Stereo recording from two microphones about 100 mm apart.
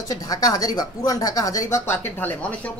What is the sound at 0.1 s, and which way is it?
Speech, 40° left (ahead or behind).